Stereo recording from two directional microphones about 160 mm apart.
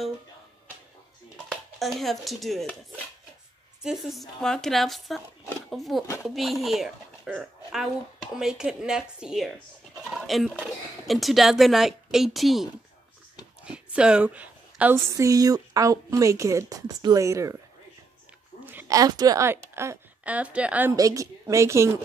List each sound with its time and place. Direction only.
1.5 s speech: centre (ahead or behind)
3.8 s a woman's voice: centre (ahead or behind)
13.7 s a woman's voice: 5° right (ahead or behind)
18.7 s a woman's voice: 15° right (ahead or behind)
20.9 s a woman's voice: 20° right (ahead or behind)